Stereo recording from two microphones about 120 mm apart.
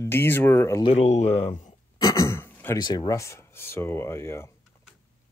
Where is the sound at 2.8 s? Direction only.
35° left (ahead or behind).